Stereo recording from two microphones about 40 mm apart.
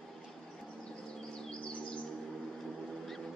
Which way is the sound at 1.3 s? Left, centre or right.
Left.